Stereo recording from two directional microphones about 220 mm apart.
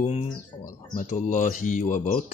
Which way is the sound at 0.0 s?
25° left (ahead or behind).